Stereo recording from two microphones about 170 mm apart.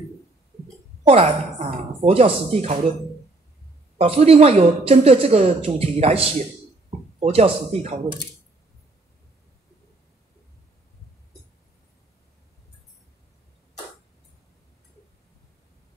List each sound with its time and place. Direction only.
1.0 s a woman's voice: 35° right (ahead or behind)
4.0 s a woman's voice: 35° right (ahead or behind)